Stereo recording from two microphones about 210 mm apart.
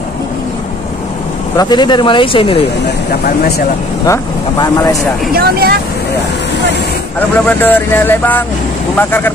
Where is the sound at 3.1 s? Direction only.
50° left (ahead or behind).